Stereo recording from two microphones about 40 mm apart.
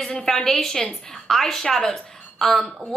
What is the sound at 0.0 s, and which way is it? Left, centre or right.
A woman's voice, centre.